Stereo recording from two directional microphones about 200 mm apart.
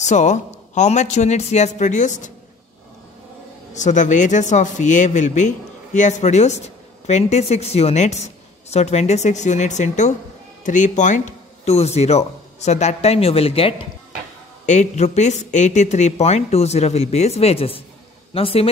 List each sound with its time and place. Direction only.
0.0 s speech: 35° left (ahead or behind)
3.7 s speech: 40° left (ahead or behind)